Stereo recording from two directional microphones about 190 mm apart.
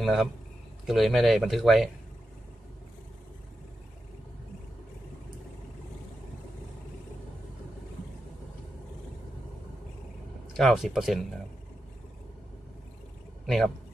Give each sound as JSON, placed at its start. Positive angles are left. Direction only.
{"t": 0.0, "sound": "a man's voice", "side_deg": 0}
{"t": 10.5, "sound": "speech", "side_deg": 0}